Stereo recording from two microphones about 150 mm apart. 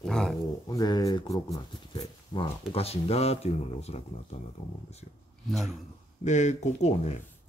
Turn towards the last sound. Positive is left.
turn(degrees=45)  # may be behind; listen again after turning